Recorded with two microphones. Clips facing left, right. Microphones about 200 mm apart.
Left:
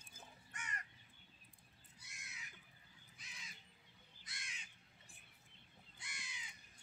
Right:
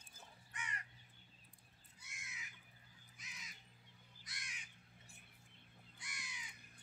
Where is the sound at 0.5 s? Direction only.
45° left (ahead or behind).